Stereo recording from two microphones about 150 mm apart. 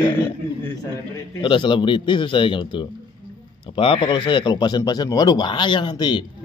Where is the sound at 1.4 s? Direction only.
30° left (ahead or behind).